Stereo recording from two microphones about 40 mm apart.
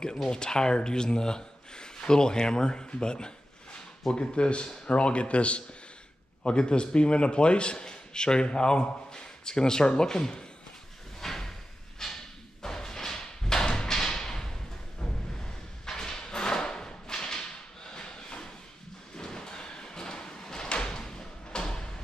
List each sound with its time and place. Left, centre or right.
0.3 s a man's voice: centre
11.1 s drawer open or close: centre
12.0 s a sound: centre
19.1 s drawer open or close: centre